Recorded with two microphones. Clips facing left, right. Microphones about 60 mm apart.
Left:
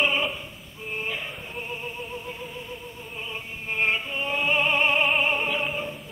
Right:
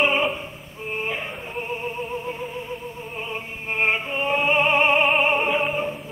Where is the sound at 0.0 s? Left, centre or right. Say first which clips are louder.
Right 4 dB; right.